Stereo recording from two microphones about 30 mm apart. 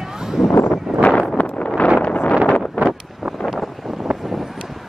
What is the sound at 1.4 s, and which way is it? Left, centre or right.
Wind noise, left.